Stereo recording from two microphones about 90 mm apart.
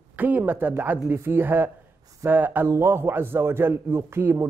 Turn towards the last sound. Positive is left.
turn(degrees=-25)  # may be behind; listen again after turning